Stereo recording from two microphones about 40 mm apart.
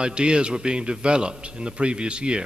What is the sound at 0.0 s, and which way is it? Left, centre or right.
A man's voice, right.